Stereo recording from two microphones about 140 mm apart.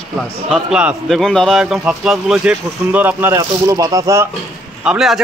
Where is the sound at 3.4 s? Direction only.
25° right (ahead or behind).